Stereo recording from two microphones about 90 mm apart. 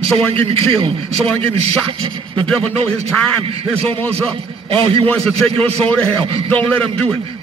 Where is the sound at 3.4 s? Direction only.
90° right.